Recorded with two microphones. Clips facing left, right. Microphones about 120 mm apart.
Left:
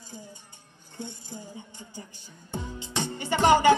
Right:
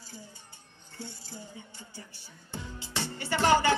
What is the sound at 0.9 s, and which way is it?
Speech, 20° left (ahead or behind).